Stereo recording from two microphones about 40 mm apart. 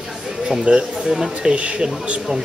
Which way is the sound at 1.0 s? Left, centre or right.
Centre.